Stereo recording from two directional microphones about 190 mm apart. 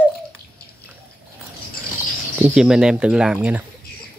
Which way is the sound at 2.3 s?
5° right (ahead or behind).